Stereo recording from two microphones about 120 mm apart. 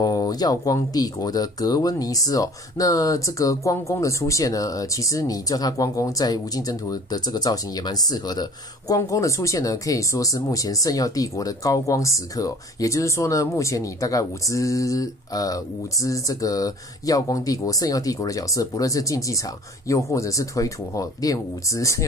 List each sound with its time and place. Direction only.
0.0 s speech: 30° left (ahead or behind)